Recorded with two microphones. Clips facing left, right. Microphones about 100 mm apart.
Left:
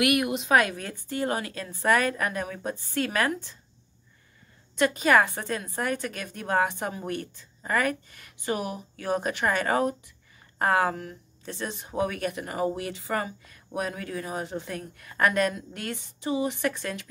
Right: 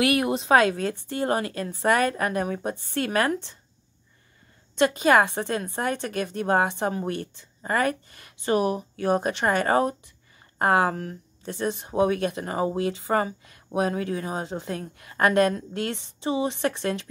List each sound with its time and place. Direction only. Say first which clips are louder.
0.0 s a woman's voice: right 2 dB; 30° right (ahead or behind)
1.3 s a woman's voice: right 5 dB; 45° right (ahead or behind)
2.6 s speech: right 3 dB; 25° right (ahead or behind)
4.7 s speech: right 2 dB; 20° right (ahead or behind)
7.6 s a woman's voice: right 2 dB; 35° right (ahead or behind)
9.0 s a woman's voice: right 3 dB; 45° right (ahead or behind)
10.6 s speech: right 2 dB; 30° right (ahead or behind)
11.0 s speech: right 4 dB; 45° right (ahead or behind)
11.8 s speech: right 5 dB; 25° right (ahead or behind)